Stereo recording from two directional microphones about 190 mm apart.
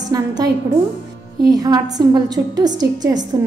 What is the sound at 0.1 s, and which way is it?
Speech, 20° right (ahead or behind).